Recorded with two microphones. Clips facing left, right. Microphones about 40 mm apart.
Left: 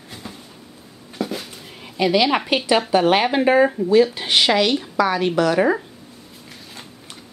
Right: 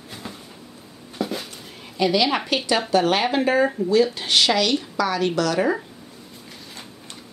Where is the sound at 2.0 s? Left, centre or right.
Centre.